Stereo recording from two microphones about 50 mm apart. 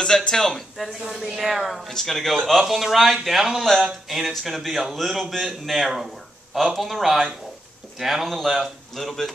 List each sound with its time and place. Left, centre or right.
0.0 s speech: centre